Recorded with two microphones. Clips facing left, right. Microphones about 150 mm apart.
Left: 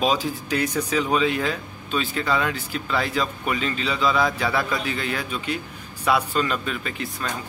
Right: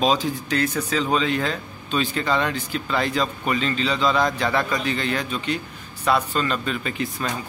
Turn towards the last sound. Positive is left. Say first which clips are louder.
# right 3 dB
turn(degrees=0)  # may be behind; listen again after turning